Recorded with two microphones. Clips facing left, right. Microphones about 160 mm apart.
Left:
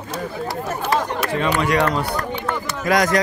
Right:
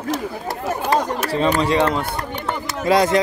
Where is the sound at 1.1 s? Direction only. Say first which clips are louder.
Right 2 dB; 35° right (ahead or behind).